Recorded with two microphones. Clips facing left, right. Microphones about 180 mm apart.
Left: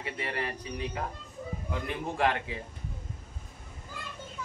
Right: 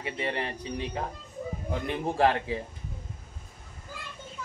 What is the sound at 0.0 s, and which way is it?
Speech, 25° right (ahead or behind).